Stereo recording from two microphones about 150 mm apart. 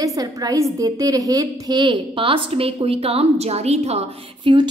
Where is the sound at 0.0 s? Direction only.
25° right (ahead or behind); by 4.6 s 45° right (ahead or behind).